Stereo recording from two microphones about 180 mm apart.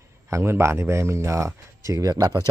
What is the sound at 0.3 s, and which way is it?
Speech, 15° right (ahead or behind).